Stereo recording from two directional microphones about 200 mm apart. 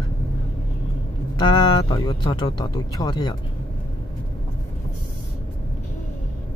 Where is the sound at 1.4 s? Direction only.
25° left (ahead or behind).